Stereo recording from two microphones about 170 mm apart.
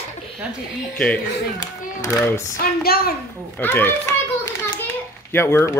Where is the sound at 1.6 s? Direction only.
20° left (ahead or behind).